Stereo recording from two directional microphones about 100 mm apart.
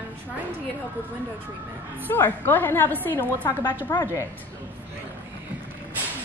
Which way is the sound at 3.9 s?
35° left (ahead or behind).